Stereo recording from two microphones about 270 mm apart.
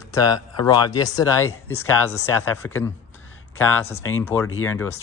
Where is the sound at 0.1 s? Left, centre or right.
Centre.